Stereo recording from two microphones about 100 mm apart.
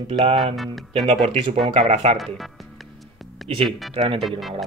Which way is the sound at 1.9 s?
90° right.